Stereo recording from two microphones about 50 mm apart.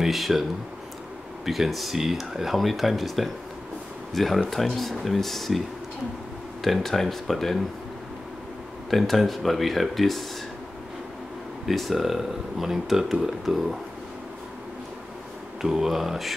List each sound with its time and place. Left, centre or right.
0.0 s speech: centre
6.6 s speech: centre
8.9 s speech: centre
11.6 s speech: centre
15.6 s speech: centre